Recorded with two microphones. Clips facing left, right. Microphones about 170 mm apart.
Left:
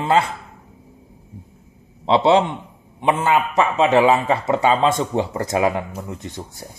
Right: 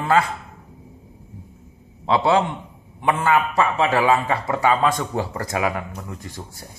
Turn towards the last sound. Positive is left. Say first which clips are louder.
# left 3 dB
turn(degrees=20)  # may be behind; listen again after turning